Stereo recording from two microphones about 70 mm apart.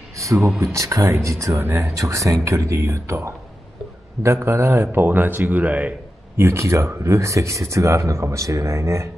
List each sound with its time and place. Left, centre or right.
0.2 s a sound: right
0.6 s speech: right
1.7 s a man's voice: right
2.0 s a man's voice: right
6.3 s speech: right